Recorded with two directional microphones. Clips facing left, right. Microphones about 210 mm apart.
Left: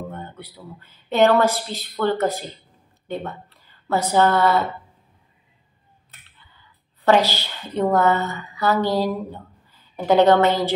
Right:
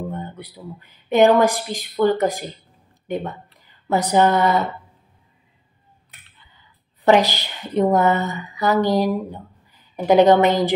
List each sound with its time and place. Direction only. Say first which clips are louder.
0.1 s a woman's voice: right 4 dB; 15° right (ahead or behind)
7.1 s a woman's voice: right 2 dB; 15° right (ahead or behind)